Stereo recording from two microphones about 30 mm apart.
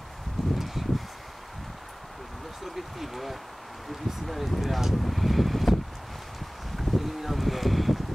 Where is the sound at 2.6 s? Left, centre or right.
Centre.